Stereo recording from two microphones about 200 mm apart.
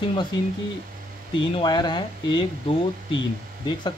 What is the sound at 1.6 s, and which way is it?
Speech, 20° left (ahead or behind).